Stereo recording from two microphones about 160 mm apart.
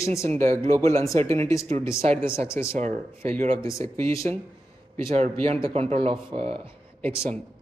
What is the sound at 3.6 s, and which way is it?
Speech, 20° left (ahead or behind).